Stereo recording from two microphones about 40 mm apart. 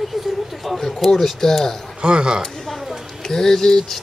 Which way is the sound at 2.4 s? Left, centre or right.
Centre.